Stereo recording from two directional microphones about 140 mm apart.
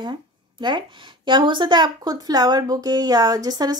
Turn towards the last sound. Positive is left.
turn(degrees=-30)  # may be behind; listen again after turning